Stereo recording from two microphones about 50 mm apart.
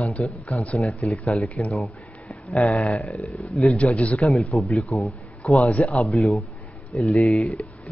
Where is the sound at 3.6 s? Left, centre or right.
Left.